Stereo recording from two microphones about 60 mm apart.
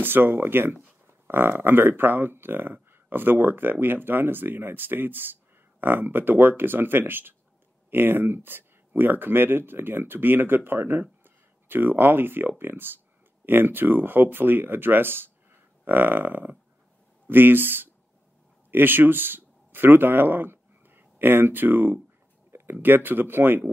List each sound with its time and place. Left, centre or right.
0.0 s speech: right